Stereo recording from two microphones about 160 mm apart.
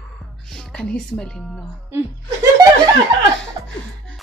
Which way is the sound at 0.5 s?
5° left (ahead or behind).